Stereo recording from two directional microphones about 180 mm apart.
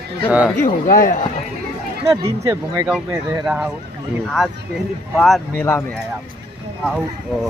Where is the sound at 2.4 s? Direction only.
15° right (ahead or behind).